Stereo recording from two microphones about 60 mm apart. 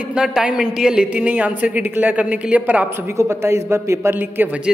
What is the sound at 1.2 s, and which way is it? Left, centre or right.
Speech, right.